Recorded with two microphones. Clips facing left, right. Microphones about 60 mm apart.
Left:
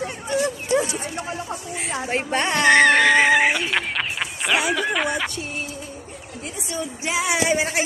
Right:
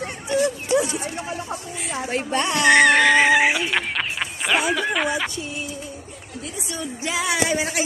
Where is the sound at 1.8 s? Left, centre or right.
Left.